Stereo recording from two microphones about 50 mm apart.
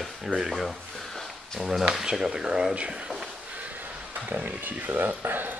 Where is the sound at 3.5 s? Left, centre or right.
Right.